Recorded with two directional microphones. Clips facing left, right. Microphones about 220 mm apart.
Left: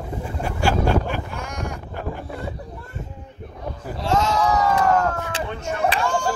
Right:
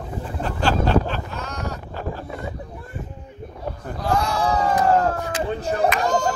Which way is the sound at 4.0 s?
25° left (ahead or behind).